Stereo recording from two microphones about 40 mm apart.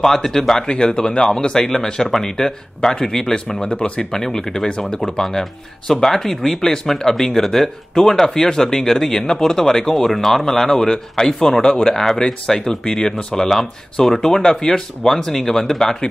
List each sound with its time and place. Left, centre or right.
0.0 s speech: centre
3.6 s speech: left